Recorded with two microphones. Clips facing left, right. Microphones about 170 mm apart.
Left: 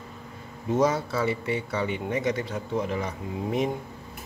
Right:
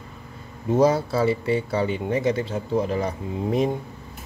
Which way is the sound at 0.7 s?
30° right (ahead or behind).